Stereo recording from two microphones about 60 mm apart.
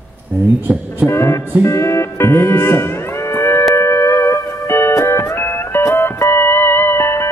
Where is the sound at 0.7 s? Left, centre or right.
Centre.